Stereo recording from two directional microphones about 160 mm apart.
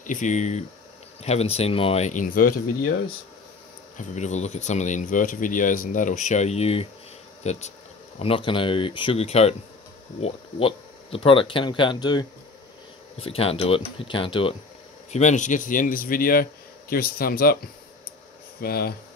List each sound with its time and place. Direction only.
0.0 s speech: 55° left (ahead or behind)
4.0 s speech: 45° left (ahead or behind)
8.2 s speech: 35° left (ahead or behind)
13.2 s speech: 35° left (ahead or behind)
15.1 s speech: 50° left (ahead or behind); by 17.6 s 70° left (ahead or behind)
18.6 s speech: 70° left (ahead or behind)